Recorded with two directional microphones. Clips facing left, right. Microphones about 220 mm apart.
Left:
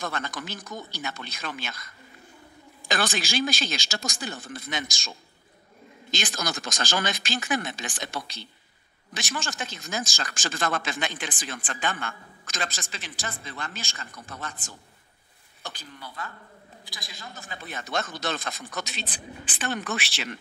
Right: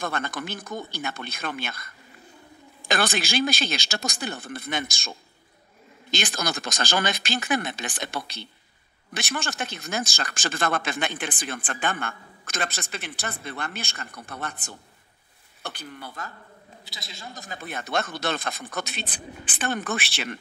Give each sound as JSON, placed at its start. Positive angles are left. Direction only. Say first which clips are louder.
{"t": 0.0, "sound": "speech", "louder": "right 3 dB", "side_deg": -55}
{"t": 6.1, "sound": "speech", "louder": "right 3 dB", "side_deg": -60}
{"t": 16.8, "sound": "speech", "louder": "right 2 dB", "side_deg": -25}